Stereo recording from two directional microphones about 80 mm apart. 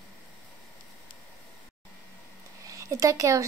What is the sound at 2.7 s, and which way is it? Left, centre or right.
Speech, right.